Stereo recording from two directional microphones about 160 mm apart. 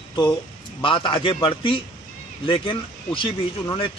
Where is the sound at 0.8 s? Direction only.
30° left (ahead or behind).